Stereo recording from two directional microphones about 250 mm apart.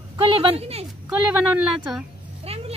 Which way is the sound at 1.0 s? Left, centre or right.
Centre.